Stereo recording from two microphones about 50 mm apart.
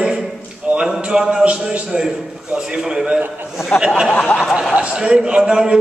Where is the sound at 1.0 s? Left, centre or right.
Centre.